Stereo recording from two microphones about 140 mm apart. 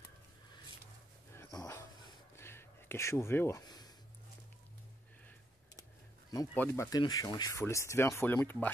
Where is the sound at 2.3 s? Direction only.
15° left (ahead or behind).